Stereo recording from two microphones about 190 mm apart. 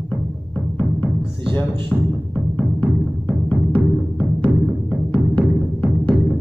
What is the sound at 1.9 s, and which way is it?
Music, 5° left (ahead or behind).